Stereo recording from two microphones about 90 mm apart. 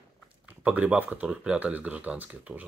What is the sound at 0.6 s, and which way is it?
Speech, 15° right (ahead or behind).